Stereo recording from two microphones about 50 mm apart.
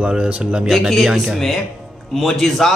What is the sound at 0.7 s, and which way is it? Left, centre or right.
A man's voice, centre.